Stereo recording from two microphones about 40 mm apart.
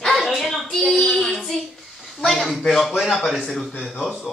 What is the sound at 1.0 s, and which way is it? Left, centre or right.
Child singing, centre.